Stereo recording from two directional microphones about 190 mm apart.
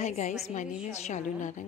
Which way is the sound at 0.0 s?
40° left (ahead or behind).